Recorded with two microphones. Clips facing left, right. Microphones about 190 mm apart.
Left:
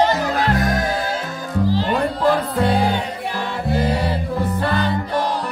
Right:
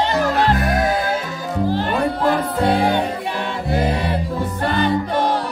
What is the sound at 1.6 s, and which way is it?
Music, 55° right (ahead or behind).